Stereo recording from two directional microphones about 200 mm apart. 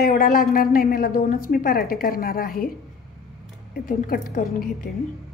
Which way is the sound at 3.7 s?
45° left (ahead or behind).